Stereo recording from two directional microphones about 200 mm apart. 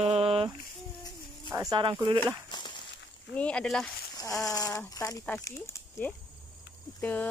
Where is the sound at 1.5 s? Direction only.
20° right (ahead or behind).